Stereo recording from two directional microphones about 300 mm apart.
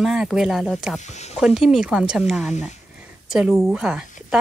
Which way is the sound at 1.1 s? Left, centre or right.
Left.